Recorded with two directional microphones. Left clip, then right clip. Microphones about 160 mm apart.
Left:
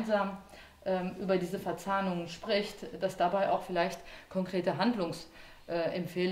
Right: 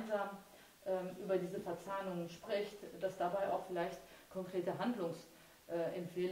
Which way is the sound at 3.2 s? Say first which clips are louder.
Left 9 dB; 20° left (ahead or behind).